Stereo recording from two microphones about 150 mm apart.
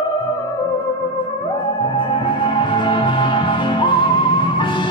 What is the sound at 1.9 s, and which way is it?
Music, 30° left (ahead or behind).